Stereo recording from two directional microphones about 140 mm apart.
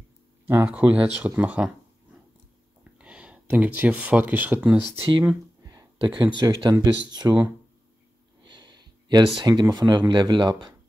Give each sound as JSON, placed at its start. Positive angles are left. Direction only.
{"t": 0.5, "sound": "speech", "side_deg": -10}
{"t": 2.8, "sound": "speech", "side_deg": -10}
{"t": 4.9, "sound": "speech", "side_deg": -40}
{"t": 5.2, "sound": "speech", "side_deg": -25}
{"t": 8.5, "sound": "a sound", "side_deg": -35}
{"t": 9.4, "sound": "speech", "side_deg": -30}